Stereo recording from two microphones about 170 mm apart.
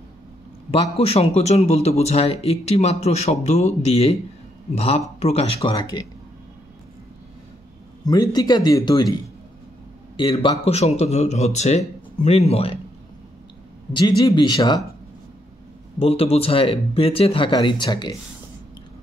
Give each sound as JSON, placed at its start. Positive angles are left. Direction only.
{"t": 0.7, "sound": "a man's voice", "side_deg": 35}
{"t": 8.0, "sound": "a man's voice", "side_deg": 20}
{"t": 10.4, "sound": "a man's voice", "side_deg": 35}
{"t": 13.9, "sound": "a man's voice", "side_deg": 25}
{"t": 16.0, "sound": "a man's voice", "side_deg": 35}